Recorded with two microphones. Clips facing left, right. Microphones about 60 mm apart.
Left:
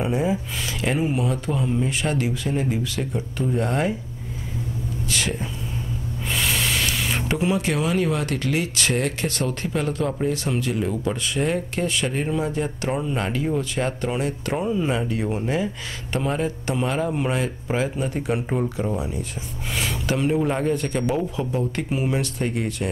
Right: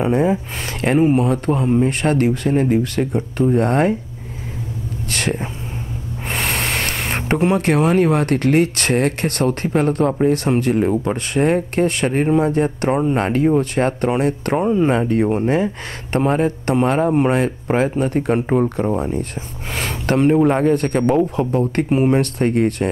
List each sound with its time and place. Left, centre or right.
0.0 s speech: right
5.1 s speech: right
20.3 s a man's voice: right
20.7 s speech: right